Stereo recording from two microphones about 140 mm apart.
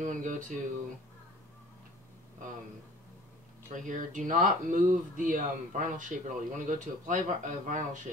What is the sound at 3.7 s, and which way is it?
Speech, 65° right (ahead or behind).